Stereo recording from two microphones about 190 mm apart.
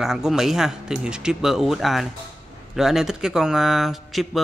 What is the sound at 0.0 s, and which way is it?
Speech, centre (ahead or behind).